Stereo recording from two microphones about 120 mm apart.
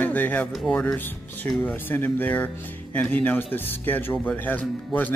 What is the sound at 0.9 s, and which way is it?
Speech, 15° left (ahead or behind).